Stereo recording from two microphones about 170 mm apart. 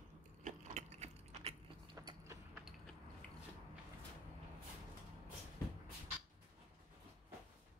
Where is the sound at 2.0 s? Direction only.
25° right (ahead or behind).